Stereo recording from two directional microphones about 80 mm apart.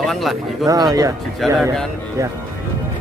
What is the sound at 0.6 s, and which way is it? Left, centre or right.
Speech, right.